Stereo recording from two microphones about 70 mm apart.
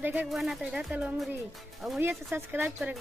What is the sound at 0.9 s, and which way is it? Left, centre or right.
Speech, right.